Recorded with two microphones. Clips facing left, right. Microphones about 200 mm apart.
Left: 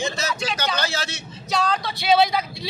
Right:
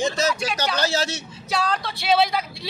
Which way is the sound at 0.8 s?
40° right (ahead or behind).